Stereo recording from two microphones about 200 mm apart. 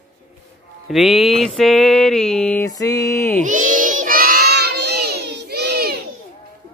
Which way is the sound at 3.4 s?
40° right (ahead or behind).